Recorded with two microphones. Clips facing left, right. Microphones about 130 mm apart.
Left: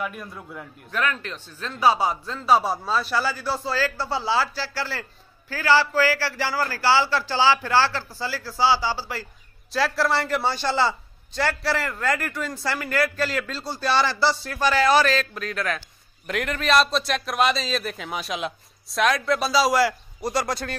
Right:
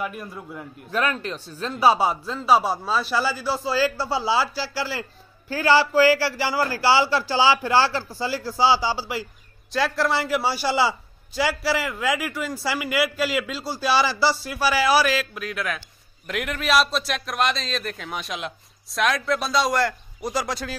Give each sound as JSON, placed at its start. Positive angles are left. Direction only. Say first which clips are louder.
{"t": 0.0, "sound": "a man's voice", "louder": "right 1 dB", "side_deg": 0}
{"t": 0.9, "sound": "a man's voice", "louder": "right 2 dB", "side_deg": -35}
{"t": 1.3, "sound": "a man's voice", "louder": "right 4 dB", "side_deg": -10}
{"t": 9.7, "sound": "a man's voice", "louder": "even", "side_deg": 0}